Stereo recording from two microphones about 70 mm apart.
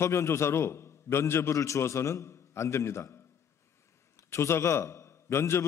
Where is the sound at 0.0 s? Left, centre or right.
Left.